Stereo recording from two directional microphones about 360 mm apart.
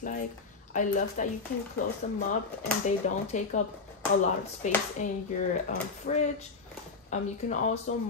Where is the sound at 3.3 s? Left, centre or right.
Centre.